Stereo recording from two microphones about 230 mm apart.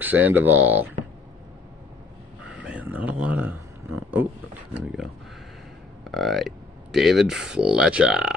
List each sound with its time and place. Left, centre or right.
0.0 s speech: centre
2.5 s speech: centre
6.1 s speech: centre